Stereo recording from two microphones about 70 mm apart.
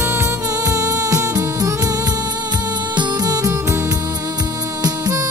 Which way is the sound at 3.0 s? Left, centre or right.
Right.